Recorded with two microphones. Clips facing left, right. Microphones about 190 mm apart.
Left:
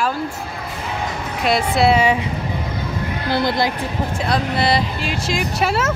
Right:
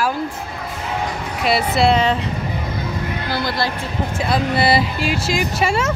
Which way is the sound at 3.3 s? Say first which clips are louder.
Left 5 dB; 20° left (ahead or behind).